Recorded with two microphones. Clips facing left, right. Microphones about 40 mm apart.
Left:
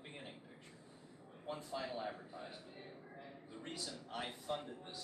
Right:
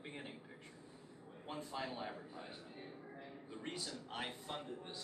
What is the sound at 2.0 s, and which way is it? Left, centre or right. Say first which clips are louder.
Speech: left 1 dB; centre.